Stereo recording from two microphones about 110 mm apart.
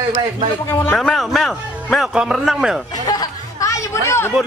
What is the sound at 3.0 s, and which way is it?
Chatter, 35° left (ahead or behind).